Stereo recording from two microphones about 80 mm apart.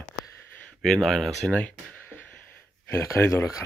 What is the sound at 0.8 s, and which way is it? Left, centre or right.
Speech, centre.